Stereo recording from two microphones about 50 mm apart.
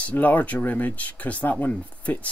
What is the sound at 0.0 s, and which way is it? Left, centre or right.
Speech, left.